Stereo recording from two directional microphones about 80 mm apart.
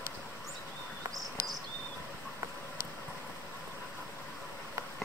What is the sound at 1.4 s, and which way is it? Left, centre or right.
Cricket, right.